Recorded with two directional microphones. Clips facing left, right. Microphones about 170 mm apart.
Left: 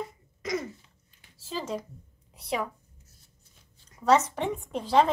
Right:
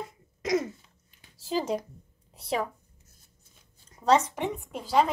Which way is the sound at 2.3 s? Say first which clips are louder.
Right 1 dB; 25° right (ahead or behind).